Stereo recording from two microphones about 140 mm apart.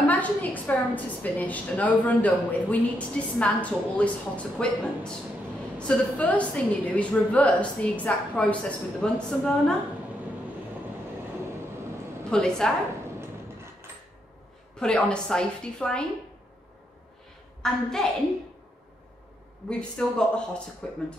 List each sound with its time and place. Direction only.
0.0 s a woman's voice: 10° left (ahead or behind)
12.3 s a woman's voice: 5° left (ahead or behind)
13.2 s a sound: 20° right (ahead or behind)
14.8 s a woman's voice: 5° left (ahead or behind)
17.6 s a woman's voice: 5° left (ahead or behind)
19.7 s a woman's voice: 5° left (ahead or behind)